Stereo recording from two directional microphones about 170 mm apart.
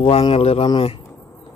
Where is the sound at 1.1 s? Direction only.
10° left (ahead or behind).